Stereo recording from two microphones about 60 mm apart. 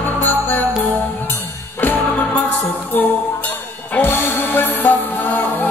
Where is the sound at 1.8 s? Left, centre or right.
Left.